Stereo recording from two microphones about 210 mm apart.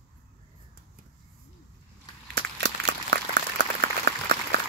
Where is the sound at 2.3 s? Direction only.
55° right (ahead or behind).